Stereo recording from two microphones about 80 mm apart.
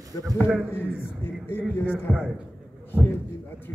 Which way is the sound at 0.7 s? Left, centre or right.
Left.